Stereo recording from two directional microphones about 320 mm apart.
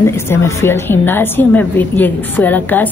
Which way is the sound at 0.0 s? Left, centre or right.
Centre.